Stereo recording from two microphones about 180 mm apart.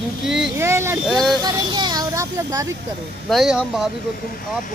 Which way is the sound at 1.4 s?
25° right (ahead or behind).